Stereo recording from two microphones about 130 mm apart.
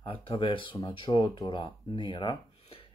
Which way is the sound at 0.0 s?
45° left (ahead or behind).